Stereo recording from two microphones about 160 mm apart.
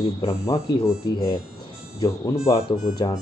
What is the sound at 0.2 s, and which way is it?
Speech, 20° left (ahead or behind).